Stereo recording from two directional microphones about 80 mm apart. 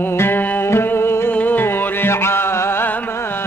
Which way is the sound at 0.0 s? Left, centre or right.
Left.